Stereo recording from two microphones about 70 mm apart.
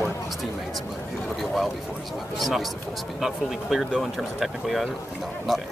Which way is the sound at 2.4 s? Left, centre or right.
Centre.